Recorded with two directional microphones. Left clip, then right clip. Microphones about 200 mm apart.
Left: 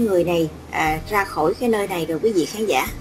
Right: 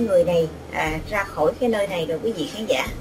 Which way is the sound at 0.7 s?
35° left (ahead or behind).